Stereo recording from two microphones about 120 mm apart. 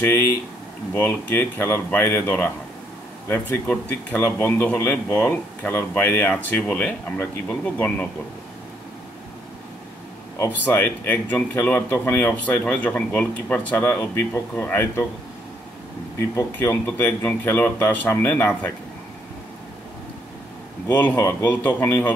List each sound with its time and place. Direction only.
0.0 s speech: 20° left (ahead or behind)
10.3 s speech: 20° left (ahead or behind)
16.2 s speech: 20° left (ahead or behind)
20.9 s speech: 15° left (ahead or behind)